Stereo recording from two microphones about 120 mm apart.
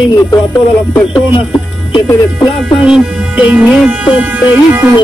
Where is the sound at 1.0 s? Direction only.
45° left (ahead or behind).